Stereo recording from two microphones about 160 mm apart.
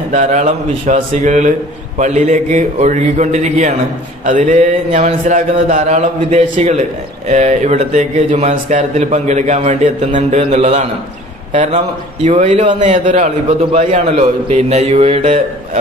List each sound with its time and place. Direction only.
0.1 s speech: 50° right (ahead or behind)